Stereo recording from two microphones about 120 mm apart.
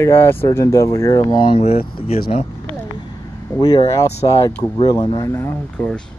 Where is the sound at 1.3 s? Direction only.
55° left (ahead or behind).